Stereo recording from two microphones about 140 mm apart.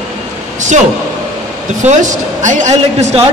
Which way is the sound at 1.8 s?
60° right (ahead or behind).